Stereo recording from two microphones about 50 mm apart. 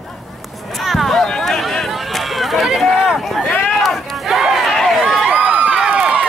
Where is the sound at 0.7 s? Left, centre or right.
Centre.